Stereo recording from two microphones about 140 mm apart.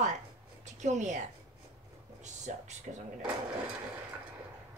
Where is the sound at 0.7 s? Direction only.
60° right (ahead or behind).